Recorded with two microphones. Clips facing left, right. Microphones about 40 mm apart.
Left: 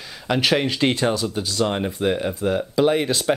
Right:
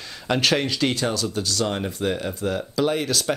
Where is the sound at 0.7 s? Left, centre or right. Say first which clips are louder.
Left 3 dB; left.